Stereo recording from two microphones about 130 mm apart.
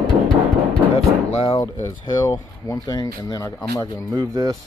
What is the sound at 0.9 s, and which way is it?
Music, 50° left (ahead or behind).